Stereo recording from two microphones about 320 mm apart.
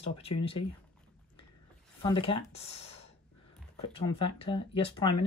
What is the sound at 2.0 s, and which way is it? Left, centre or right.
Speech, centre.